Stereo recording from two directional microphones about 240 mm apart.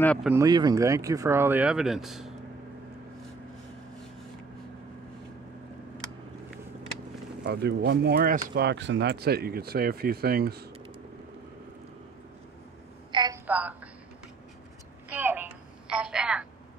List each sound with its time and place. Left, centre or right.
0.0 s speech: centre
0.3 s speech: centre
7.4 s speech: right
13.1 s telephone: centre
13.5 s a woman's voice: centre
15.0 s telephone: centre